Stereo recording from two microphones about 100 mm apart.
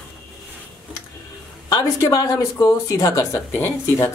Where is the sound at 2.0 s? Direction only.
35° left (ahead or behind).